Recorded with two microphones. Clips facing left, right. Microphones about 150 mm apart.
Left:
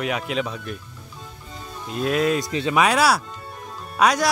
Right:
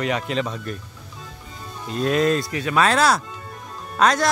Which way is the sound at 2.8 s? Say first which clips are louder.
Right 2 dB; 10° left (ahead or behind).